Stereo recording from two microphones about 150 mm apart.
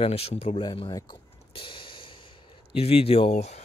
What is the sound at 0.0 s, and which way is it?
Speech, 40° left (ahead or behind).